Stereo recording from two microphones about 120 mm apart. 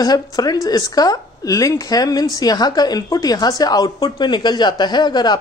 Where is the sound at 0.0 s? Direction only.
35° left (ahead or behind).